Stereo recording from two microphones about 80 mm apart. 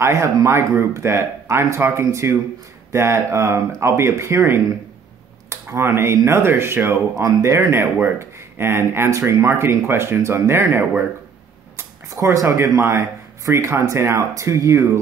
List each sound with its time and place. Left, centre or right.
0.0 s speech: right
11.7 s a sound: right
12.4 s speech: right